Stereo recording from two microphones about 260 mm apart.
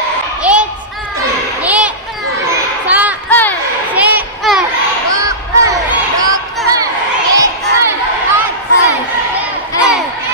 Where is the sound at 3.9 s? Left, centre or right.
Centre.